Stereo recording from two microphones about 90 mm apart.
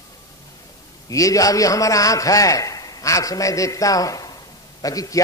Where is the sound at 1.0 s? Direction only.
40° left (ahead or behind).